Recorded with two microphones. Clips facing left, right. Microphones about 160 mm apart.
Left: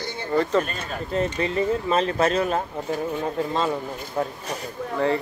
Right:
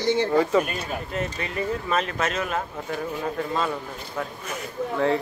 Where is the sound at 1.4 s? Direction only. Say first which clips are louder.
Left 5 dB; 30° left (ahead or behind).